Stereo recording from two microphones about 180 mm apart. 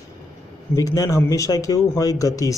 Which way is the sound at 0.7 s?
20° left (ahead or behind).